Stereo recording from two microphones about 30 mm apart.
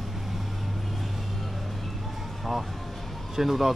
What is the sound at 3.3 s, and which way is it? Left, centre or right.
Speech, centre.